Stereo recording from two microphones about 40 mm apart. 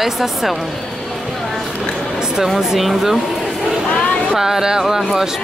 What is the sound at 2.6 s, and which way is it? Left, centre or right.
Speech, centre.